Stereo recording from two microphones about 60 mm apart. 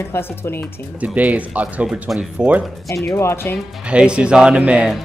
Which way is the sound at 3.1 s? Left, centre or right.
Left.